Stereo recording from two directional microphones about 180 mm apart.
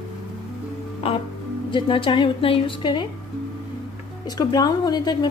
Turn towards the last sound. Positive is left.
turn(degrees=20)  # may be behind; listen again after turning